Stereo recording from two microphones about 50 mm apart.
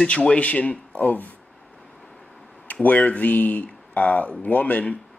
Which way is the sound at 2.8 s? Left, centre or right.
Left.